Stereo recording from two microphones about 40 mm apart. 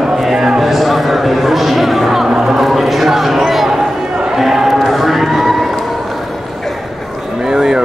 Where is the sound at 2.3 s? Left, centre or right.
Centre.